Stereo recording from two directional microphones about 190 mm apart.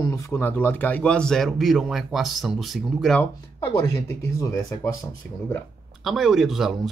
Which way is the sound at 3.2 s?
15° left (ahead or behind).